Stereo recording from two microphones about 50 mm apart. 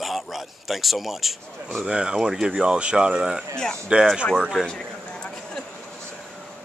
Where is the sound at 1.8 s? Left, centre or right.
Centre.